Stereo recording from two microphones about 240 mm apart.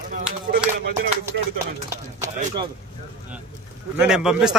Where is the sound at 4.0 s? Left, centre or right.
Centre.